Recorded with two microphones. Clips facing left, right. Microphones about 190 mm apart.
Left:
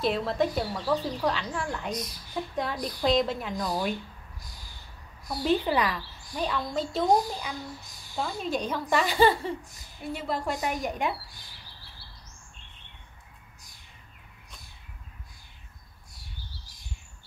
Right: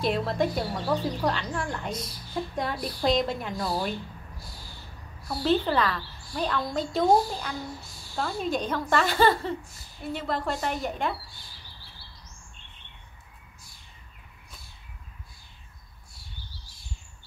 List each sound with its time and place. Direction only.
0.0 s a woman's voice: centre (ahead or behind)
3.5 s a woman's voice: 15° left (ahead or behind)
5.2 s a woman's voice: 15° left (ahead or behind)
7.1 s a woman's voice: 15° left (ahead or behind)